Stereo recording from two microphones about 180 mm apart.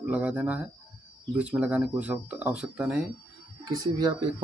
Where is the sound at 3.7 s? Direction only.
20° right (ahead or behind).